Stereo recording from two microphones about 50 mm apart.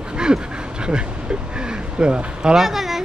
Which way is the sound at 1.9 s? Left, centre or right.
Right.